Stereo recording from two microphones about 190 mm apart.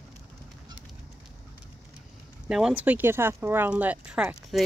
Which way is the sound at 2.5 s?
5° right (ahead or behind).